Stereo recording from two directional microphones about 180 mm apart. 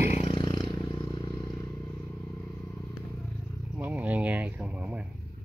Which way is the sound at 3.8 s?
10° right (ahead or behind).